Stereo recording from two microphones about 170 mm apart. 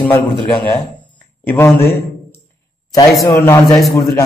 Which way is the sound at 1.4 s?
15° left (ahead or behind).